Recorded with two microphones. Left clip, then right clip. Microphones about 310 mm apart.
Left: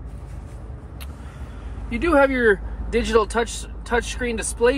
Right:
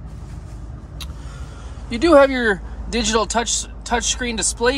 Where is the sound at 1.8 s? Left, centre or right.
Centre.